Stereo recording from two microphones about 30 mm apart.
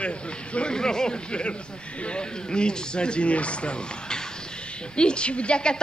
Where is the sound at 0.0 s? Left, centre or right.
Left.